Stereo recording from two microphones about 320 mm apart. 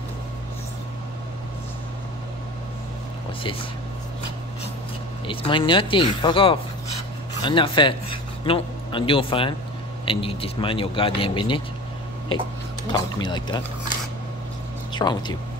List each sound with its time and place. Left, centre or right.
5.2 s a man's voice: centre
14.9 s speech: centre